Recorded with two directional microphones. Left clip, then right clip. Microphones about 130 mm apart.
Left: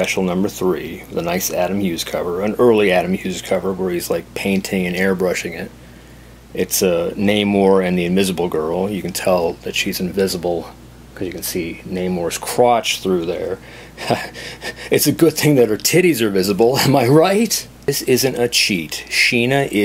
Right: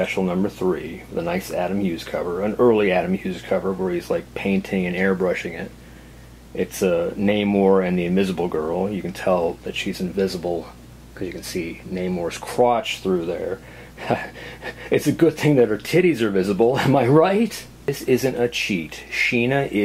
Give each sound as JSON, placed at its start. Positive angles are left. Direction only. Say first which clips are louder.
{"t": 0.0, "sound": "speech", "louder": "left 4 dB", "side_deg": 40}